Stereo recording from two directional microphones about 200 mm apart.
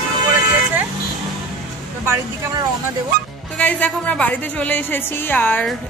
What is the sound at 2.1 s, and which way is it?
Speech, 20° right (ahead or behind).